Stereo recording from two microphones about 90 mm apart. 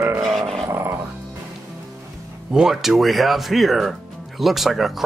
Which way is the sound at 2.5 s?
5° right (ahead or behind).